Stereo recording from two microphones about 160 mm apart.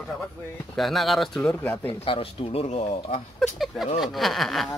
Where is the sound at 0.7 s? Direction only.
Centre (ahead or behind).